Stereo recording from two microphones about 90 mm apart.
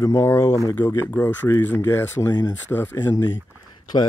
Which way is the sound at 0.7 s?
20° left (ahead or behind).